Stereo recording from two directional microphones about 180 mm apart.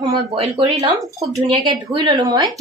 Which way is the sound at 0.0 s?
30° right (ahead or behind).